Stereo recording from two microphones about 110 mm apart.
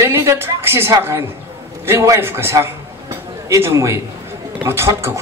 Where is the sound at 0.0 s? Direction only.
25° right (ahead or behind).